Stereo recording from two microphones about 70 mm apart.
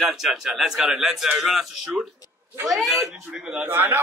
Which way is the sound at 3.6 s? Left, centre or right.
Right.